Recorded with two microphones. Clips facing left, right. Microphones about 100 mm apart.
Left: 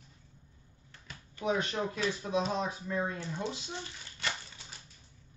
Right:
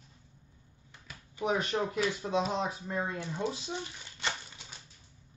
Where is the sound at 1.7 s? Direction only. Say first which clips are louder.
Right 2 dB; 25° right (ahead or behind).